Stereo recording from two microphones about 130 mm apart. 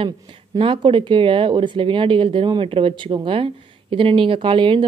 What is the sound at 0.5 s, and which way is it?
A woman's voice, 40° right (ahead or behind).